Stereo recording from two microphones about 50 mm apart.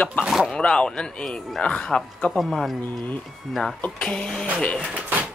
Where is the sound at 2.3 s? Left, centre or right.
Centre.